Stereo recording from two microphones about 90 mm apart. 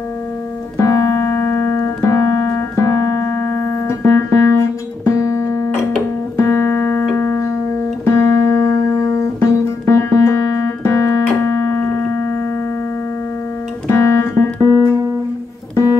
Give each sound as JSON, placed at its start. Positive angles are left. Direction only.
{"t": 0.7, "sound": "keyboard", "side_deg": 40}
{"t": 6.3, "sound": "music", "side_deg": 30}
{"t": 9.8, "sound": "keyboard", "side_deg": 35}
{"t": 13.8, "sound": "music", "side_deg": 35}